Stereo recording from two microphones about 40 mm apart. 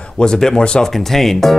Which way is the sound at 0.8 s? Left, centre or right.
Centre.